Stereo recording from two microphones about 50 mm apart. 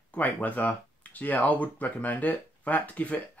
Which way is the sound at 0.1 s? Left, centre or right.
Left.